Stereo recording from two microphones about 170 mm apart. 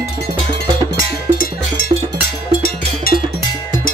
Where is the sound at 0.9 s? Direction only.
55° left (ahead or behind).